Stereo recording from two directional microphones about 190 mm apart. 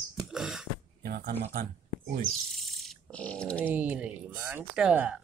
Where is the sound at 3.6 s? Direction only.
5° right (ahead or behind).